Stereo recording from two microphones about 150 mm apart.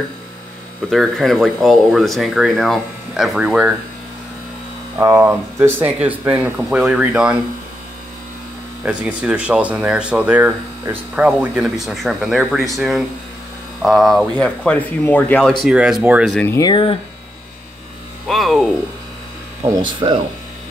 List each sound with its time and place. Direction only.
0.8 s speech: centre (ahead or behind)
4.9 s speech: 20° right (ahead or behind)
8.8 s speech: 10° right (ahead or behind); by 15.5 s 10° left (ahead or behind)
15.6 s speech: 5° right (ahead or behind)
16.4 s speech: 20° left (ahead or behind)
16.7 s speech: 35° left (ahead or behind)
18.3 s speech: centre (ahead or behind)
19.6 s speech: 30° right (ahead or behind)